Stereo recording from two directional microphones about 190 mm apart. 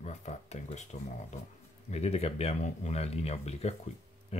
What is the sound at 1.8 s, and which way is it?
Speech, 35° left (ahead or behind).